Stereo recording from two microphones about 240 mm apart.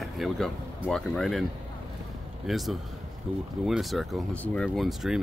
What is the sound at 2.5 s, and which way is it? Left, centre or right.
Speech, centre.